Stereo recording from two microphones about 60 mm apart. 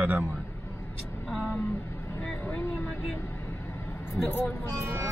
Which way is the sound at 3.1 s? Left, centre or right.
Left.